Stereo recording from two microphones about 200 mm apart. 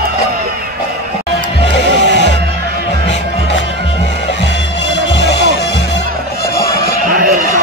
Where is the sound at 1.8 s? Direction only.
60° right (ahead or behind).